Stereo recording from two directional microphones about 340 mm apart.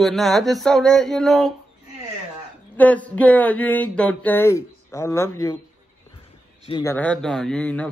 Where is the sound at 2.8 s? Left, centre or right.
Centre.